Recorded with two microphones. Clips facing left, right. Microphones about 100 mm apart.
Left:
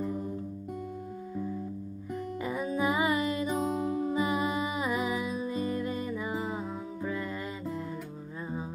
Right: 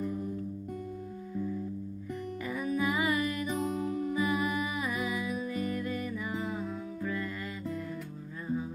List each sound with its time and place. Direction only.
0.0 s music: 25° left (ahead or behind)
2.4 s music: 25° left (ahead or behind)